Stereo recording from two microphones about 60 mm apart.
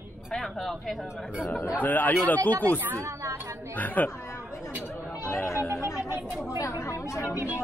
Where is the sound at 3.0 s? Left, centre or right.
Right.